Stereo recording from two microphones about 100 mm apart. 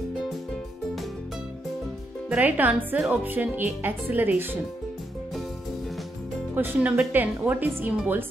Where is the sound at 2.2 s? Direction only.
15° right (ahead or behind).